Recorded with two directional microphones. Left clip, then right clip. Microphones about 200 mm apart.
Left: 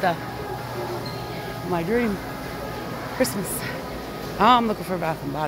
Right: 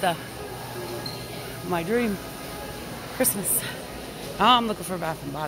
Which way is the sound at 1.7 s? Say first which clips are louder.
Left 1 dB; 15° right (ahead or behind).